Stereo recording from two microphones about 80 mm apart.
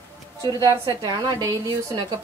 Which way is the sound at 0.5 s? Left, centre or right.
Right.